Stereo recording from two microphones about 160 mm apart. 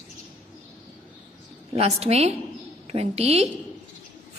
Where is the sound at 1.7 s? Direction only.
40° right (ahead or behind).